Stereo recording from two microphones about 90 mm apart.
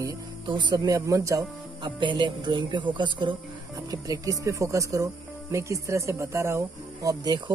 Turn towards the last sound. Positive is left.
turn(degrees=-35)  # may be behind; listen again after turning